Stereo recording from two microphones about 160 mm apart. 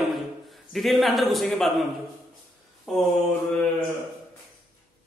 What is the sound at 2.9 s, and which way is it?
Speech, centre (ahead or behind).